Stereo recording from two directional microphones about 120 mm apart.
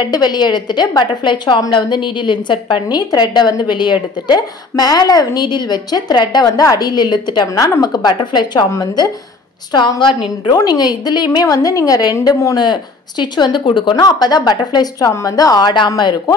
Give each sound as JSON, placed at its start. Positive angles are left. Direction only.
{"t": 0.0, "sound": "a woman's voice", "side_deg": 35}